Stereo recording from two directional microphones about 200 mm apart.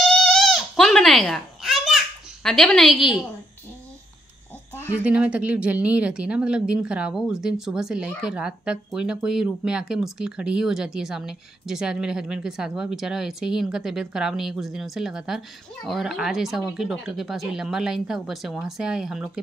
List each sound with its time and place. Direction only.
0.0 s baby cry: centre (ahead or behind)
4.9 s speech: 5° right (ahead or behind)